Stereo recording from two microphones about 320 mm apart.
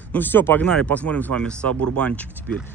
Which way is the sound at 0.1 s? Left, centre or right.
Centre.